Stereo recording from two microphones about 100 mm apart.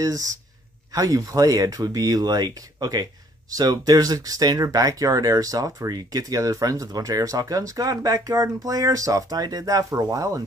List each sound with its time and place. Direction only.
0.0 s speech: 35° right (ahead or behind)